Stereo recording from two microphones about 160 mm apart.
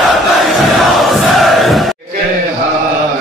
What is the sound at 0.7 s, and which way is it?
Crowd, centre (ahead or behind).